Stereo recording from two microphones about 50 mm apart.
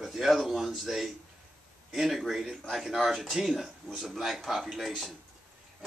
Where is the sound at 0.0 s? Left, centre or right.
Centre.